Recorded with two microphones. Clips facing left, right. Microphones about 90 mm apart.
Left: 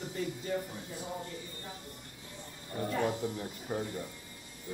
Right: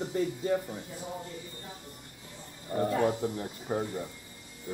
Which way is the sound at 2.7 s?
35° right (ahead or behind).